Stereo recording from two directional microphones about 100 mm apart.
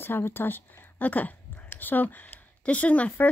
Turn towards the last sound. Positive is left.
turn(degrees=15)  # may be behind; listen again after turning